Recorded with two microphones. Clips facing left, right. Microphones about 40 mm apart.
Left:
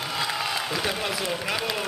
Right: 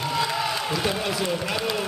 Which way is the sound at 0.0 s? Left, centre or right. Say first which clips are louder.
Right 3 dB; centre.